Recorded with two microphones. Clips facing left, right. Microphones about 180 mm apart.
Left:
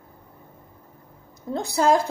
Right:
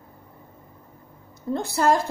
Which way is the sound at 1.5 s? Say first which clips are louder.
Left 1 dB; 15° left (ahead or behind).